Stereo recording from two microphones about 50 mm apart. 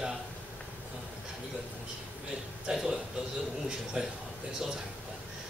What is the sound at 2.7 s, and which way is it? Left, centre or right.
Speech, centre.